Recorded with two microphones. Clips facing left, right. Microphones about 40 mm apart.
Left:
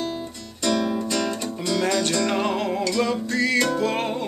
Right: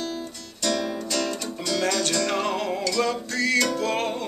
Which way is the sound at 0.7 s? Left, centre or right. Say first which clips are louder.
Left 3 dB; centre.